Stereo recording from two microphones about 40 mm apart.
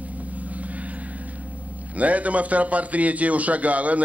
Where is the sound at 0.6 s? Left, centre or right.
Right.